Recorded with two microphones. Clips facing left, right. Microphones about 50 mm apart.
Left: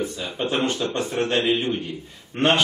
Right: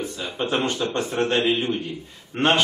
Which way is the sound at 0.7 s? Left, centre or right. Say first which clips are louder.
Even; right.